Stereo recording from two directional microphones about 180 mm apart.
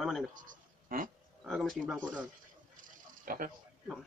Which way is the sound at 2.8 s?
50° right (ahead or behind).